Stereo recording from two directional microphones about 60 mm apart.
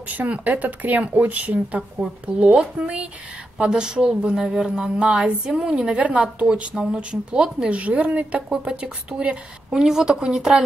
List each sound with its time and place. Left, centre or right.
0.1 s a woman's voice: right